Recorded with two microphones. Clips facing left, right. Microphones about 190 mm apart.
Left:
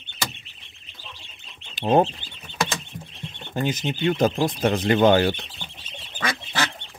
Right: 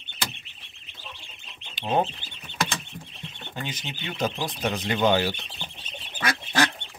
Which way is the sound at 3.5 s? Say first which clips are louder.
Left 11 dB; 45° left (ahead or behind).